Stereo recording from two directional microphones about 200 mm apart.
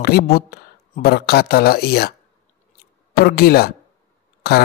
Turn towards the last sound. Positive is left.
turn(degrees=50)  # may be behind; listen again after turning